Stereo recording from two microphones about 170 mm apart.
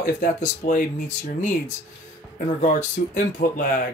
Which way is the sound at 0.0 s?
55° left (ahead or behind).